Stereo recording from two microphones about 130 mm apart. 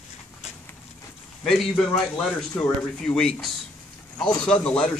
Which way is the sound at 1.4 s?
Centre (ahead or behind).